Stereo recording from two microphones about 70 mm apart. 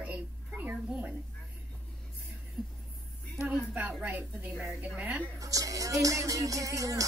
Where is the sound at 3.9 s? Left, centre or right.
Right.